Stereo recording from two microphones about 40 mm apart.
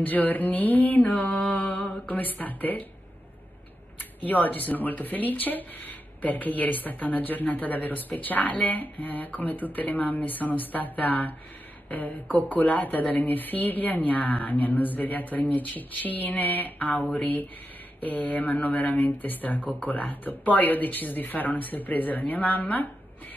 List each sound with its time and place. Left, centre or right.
0.0 s speech: left
4.0 s speech: left